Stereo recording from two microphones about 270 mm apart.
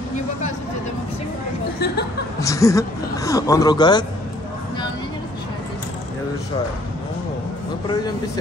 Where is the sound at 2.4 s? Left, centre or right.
Centre.